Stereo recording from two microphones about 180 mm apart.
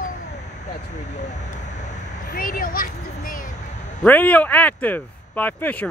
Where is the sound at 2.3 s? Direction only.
50° left (ahead or behind).